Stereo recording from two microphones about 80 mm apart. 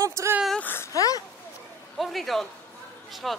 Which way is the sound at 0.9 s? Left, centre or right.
Left.